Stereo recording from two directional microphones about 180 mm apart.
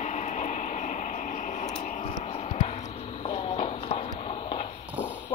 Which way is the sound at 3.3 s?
35° left (ahead or behind).